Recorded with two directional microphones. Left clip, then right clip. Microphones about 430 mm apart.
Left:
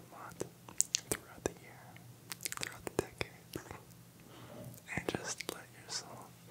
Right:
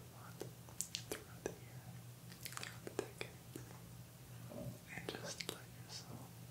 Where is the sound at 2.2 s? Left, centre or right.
Left.